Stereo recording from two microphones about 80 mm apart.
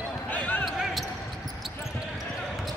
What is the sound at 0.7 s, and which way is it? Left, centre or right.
Basketball bounce, centre.